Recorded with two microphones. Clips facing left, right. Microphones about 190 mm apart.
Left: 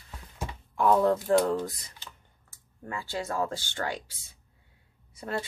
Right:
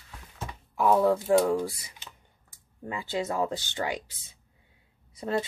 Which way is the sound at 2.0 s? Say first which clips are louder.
Even; 15° right (ahead or behind).